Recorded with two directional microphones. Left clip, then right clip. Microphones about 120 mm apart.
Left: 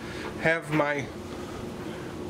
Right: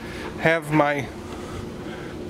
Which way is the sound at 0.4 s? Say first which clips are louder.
Right 6 dB; 25° right (ahead or behind).